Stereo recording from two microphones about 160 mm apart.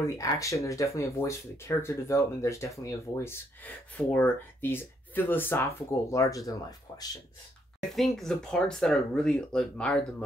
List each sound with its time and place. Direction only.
0.0 s speech: 20° left (ahead or behind)
7.9 s speech: centre (ahead or behind)